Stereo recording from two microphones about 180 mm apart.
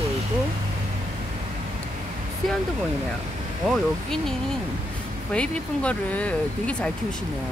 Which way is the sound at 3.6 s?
Centre (ahead or behind).